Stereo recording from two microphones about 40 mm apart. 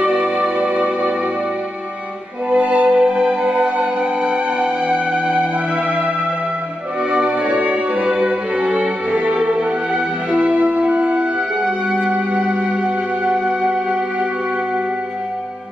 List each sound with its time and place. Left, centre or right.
0.0 s music: right
2.5 s music: right